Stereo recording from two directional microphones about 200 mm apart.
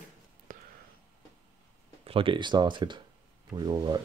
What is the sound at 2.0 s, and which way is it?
Speech, 25° right (ahead or behind).